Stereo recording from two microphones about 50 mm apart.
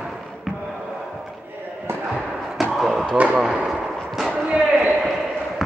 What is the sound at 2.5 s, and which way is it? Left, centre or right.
Basketball bounce, centre.